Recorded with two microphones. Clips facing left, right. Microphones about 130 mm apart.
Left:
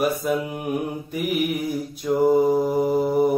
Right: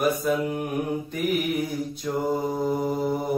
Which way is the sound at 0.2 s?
5° left (ahead or behind).